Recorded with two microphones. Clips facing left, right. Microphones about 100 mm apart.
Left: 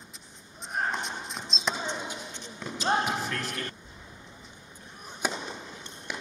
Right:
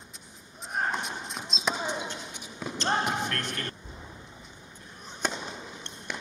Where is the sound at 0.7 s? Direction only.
Centre (ahead or behind).